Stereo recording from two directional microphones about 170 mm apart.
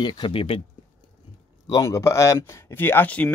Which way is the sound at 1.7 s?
20° left (ahead or behind).